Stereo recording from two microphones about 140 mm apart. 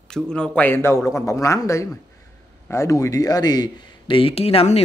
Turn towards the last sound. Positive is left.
turn(degrees=45)  # may be behind; listen again after turning